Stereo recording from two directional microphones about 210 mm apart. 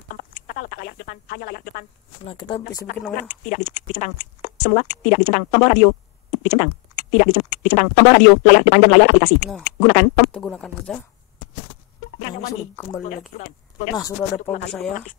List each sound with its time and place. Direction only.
0.5 s speech: 45° left (ahead or behind)
2.2 s speech: 20° left (ahead or behind)
3.2 s speech: 35° left (ahead or behind)
10.3 s speech: 5° left (ahead or behind)
13.3 s speech: 40° left (ahead or behind)
13.9 s speech: 15° left (ahead or behind)